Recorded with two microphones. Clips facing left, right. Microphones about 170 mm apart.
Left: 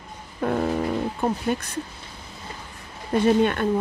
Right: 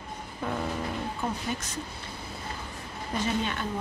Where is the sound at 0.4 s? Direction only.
55° left (ahead or behind).